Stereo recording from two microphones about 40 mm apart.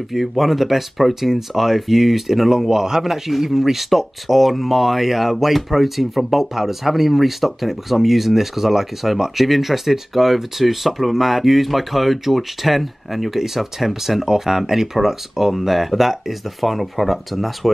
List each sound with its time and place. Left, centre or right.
0.1 s speech: centre